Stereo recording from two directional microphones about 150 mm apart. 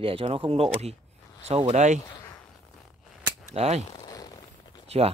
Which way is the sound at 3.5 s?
45° right (ahead or behind).